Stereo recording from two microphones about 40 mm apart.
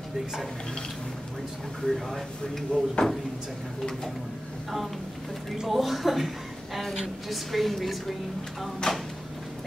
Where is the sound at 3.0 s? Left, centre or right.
Left.